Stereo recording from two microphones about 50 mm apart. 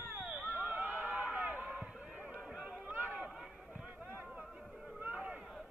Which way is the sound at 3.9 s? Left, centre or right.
Right.